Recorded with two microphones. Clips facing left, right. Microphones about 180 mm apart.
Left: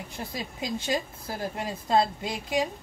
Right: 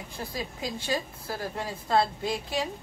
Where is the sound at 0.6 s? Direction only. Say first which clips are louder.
Left 3 dB; 20° left (ahead or behind).